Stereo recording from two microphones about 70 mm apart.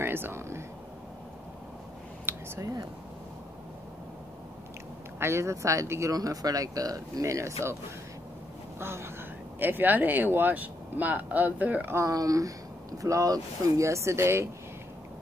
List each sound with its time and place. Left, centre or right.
0.0 s a sound: right
2.3 s a sound: right
2.6 s speech: right
5.2 s speech: right
6.1 s speech: right
8.7 s speech: right
12.1 s speech: right